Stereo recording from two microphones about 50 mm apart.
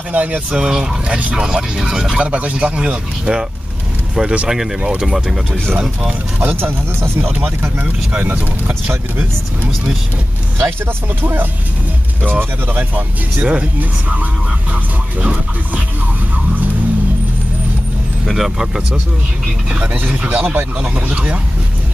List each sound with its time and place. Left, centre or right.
0.1 s speech: right
0.7 s speech: centre
2.0 s speech: right; by 5.6 s centre
6.4 s speech: right
7.3 s speech: right
10.6 s speech: right
18.2 s speech: centre
19.7 s speech: right